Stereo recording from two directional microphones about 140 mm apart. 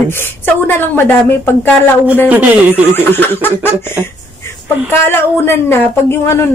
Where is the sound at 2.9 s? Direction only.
15° left (ahead or behind).